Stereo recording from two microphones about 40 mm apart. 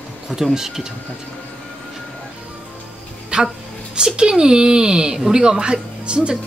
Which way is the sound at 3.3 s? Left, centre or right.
Right.